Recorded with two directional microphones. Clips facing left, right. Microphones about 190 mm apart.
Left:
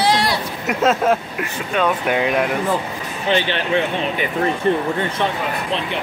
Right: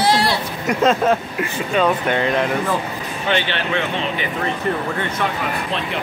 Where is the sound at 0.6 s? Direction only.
5° left (ahead or behind).